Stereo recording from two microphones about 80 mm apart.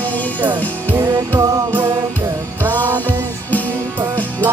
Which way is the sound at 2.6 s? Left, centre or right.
Right.